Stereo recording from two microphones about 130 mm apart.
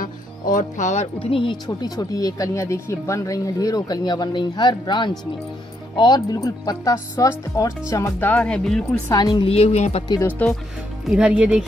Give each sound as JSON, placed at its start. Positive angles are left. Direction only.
{"t": 0.0, "sound": "music", "side_deg": 85}
{"t": 1.2, "sound": "speech", "side_deg": 40}
{"t": 8.2, "sound": "speech", "side_deg": 10}
{"t": 9.1, "sound": "speech", "side_deg": 35}
{"t": 9.5, "sound": "speech", "side_deg": 55}
{"t": 10.4, "sound": "speech", "side_deg": 10}
{"t": 11.1, "sound": "speech", "side_deg": -10}